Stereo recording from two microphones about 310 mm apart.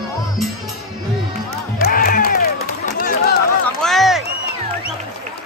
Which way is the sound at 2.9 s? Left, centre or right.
Left.